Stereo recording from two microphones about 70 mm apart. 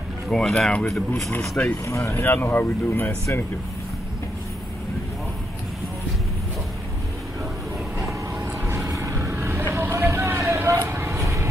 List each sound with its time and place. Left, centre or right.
0.3 s speech: centre
1.6 s speech: left
2.2 s speech: left
8.8 s vehicle: right
9.1 s a sound: right
9.8 s vehicle: right